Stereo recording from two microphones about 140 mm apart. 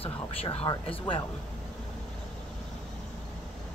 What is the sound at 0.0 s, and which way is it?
Speech, 45° left (ahead or behind).